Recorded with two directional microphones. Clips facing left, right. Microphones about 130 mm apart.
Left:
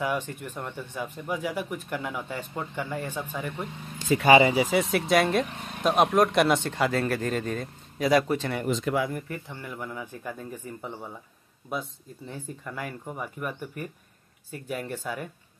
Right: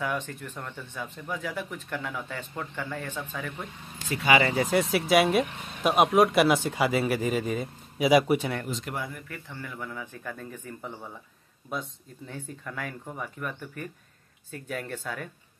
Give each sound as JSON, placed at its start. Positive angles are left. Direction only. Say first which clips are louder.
{"t": 0.0, "sound": "speech", "louder": "left 2 dB", "side_deg": 10}
{"t": 4.6, "sound": "speech", "louder": "even", "side_deg": 0}
{"t": 8.6, "sound": "speech", "louder": "left 8 dB", "side_deg": 90}
{"t": 9.5, "sound": "speech", "louder": "left 1 dB", "side_deg": 15}